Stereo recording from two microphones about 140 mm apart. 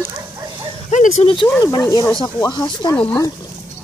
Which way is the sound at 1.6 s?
25° left (ahead or behind).